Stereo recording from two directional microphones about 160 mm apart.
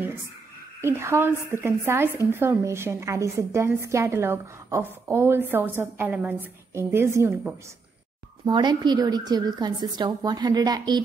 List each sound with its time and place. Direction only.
0.7 s a woman's voice: 15° right (ahead or behind)
8.5 s a woman's voice: 25° right (ahead or behind)